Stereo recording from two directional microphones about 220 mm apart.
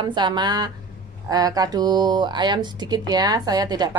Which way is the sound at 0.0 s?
20° right (ahead or behind).